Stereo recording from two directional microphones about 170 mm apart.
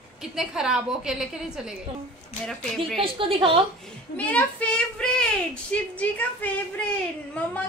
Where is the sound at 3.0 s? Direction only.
30° right (ahead or behind).